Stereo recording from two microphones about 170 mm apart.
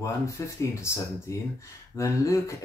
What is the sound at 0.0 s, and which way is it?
Speech, 15° left (ahead or behind).